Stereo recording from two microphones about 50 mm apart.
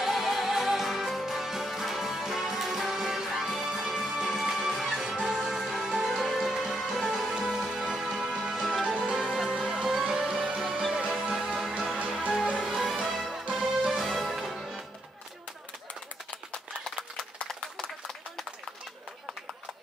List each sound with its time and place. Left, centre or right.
0.0 s music: centre